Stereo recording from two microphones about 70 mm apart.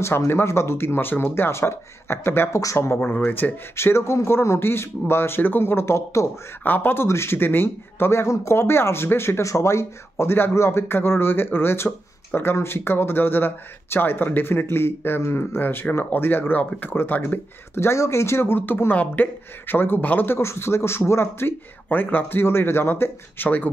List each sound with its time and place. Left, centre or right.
0.0 s speech: left
2.6 s speech: left
3.0 s speech: left
3.7 s speech: left
6.6 s speech: left
17.7 s speech: left